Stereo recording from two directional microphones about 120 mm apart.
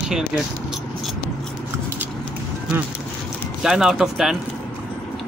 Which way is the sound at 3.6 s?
5° right (ahead or behind).